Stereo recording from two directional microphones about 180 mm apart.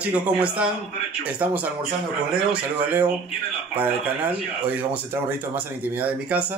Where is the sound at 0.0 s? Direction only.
5° right (ahead or behind).